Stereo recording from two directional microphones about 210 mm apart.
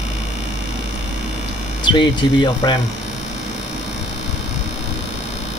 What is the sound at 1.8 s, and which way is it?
Speech, 20° left (ahead or behind).